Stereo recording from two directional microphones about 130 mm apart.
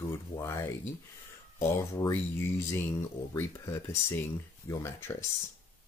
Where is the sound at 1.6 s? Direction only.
20° left (ahead or behind).